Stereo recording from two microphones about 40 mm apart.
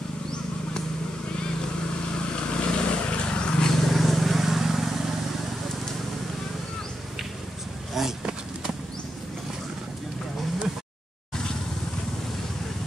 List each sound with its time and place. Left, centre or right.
2.1 s vehicle: left
3.8 s vehicle: centre
8.0 s a sound: centre